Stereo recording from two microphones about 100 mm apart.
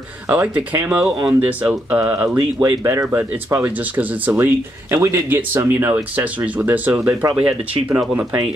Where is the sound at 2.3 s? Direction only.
40° right (ahead or behind).